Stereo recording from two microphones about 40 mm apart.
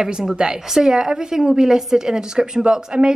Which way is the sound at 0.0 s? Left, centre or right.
Centre.